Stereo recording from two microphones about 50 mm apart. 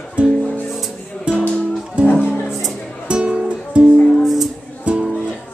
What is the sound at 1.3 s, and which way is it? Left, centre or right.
Music, right.